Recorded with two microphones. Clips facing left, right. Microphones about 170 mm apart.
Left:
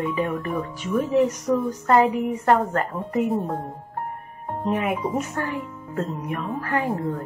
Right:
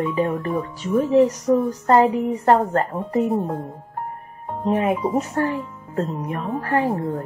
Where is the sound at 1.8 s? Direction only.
35° right (ahead or behind).